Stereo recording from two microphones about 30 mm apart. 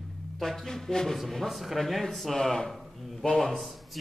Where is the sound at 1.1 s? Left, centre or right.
Centre.